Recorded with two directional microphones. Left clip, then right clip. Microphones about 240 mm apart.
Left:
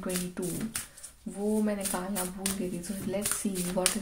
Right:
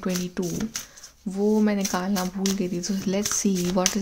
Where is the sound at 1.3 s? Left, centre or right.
Right.